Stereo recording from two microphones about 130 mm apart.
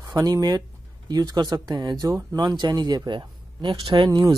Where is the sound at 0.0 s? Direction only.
30° right (ahead or behind).